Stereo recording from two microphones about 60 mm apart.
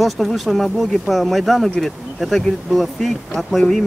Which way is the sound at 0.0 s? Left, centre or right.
Centre.